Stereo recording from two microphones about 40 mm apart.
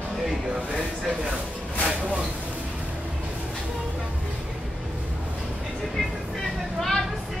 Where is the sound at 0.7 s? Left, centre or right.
Right.